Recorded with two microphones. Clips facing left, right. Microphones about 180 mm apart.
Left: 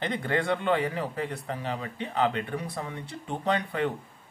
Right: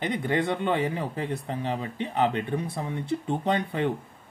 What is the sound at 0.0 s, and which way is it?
Speech, 15° right (ahead or behind).